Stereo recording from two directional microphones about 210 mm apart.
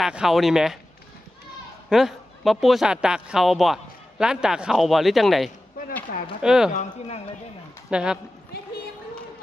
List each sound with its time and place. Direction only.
0.0 s speech: centre (ahead or behind)
1.9 s speech: centre (ahead or behind)
6.7 s speech: 35° left (ahead or behind)
7.9 s speech: 5° right (ahead or behind)